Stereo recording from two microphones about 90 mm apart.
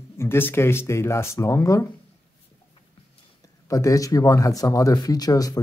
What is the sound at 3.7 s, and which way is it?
Speech, 40° left (ahead or behind).